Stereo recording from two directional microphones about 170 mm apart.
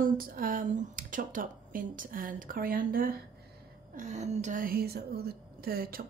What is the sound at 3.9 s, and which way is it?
Speech, 45° right (ahead or behind).